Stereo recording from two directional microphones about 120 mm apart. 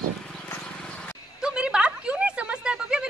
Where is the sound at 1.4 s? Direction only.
5° right (ahead or behind).